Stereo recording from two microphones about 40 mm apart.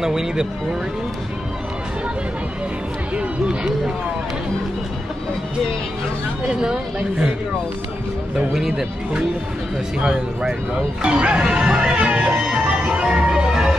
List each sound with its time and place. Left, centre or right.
0.0 s speech: centre
8.5 s speech: centre
9.9 s music: right